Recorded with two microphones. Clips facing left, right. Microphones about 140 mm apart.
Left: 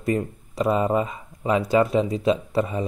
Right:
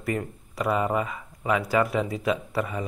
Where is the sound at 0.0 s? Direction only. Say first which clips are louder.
Left 5 dB; 25° left (ahead or behind).